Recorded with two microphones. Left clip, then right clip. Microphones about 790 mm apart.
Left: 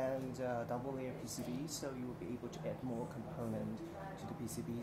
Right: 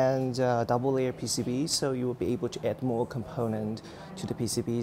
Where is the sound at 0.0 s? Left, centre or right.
Right.